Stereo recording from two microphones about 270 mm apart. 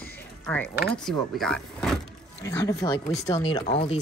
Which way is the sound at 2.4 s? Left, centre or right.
Centre.